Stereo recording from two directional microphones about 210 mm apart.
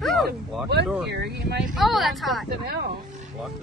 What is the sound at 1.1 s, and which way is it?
Speech, 50° right (ahead or behind).